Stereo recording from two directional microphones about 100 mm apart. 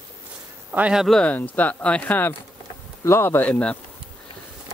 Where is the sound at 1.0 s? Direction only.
5° left (ahead or behind).